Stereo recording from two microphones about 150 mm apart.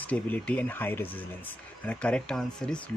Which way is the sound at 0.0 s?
10° left (ahead or behind).